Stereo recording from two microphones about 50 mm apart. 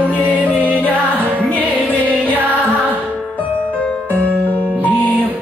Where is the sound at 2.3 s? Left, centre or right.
Right.